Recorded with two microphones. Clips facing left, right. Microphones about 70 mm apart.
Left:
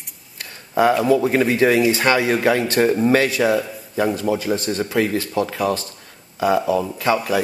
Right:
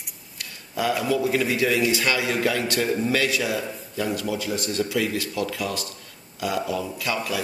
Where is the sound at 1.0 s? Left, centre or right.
Left.